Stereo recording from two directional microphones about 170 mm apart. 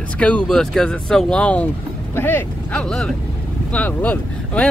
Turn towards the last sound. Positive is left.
turn(degrees=10)  # may be behind; listen again after turning